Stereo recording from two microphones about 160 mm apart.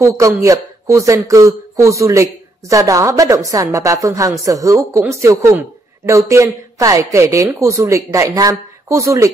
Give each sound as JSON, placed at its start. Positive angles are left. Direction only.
{"t": 0.0, "sound": "a man's voice", "side_deg": -20}